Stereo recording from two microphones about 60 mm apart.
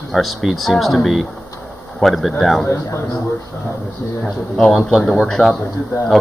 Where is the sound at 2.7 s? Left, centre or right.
Left.